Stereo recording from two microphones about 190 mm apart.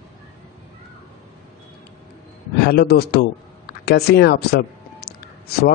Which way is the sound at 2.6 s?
55° left (ahead or behind).